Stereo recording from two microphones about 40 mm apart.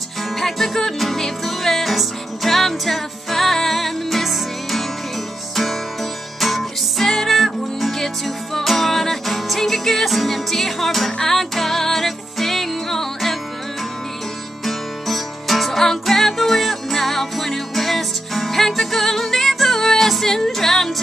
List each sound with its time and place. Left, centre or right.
0.4 s music: centre
6.4 s music: centre
14.6 s music: centre